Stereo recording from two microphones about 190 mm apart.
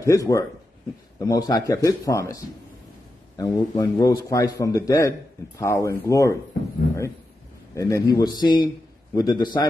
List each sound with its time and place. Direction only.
0.0 s a man's voice: 15° left (ahead or behind)
7.7 s a man's voice: 15° left (ahead or behind)